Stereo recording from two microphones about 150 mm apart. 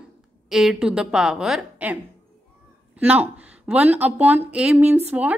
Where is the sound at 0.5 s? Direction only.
Centre (ahead or behind).